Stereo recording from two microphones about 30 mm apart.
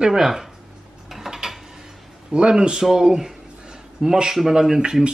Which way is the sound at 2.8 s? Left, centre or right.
Centre.